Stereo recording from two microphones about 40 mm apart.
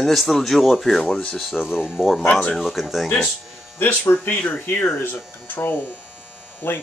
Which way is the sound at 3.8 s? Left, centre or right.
Left.